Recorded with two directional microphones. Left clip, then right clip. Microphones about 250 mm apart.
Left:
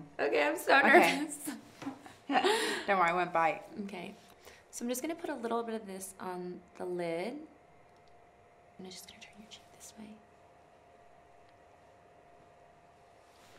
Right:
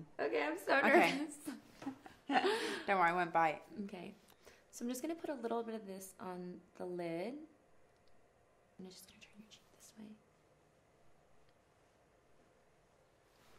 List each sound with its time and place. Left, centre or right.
0.1 s a woman's voice: right
2.9 s speech: centre
3.7 s a woman's voice: right
8.8 s whispering: right